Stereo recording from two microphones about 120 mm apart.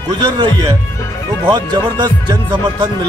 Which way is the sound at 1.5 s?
35° right (ahead or behind).